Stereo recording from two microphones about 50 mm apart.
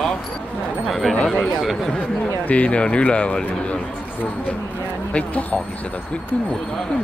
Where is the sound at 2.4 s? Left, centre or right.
Left.